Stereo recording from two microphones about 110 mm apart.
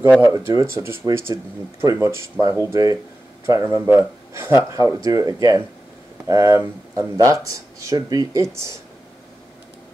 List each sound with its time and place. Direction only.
0.2 s speech: 30° right (ahead or behind)